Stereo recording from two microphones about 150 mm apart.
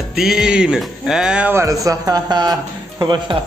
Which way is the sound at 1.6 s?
20° right (ahead or behind).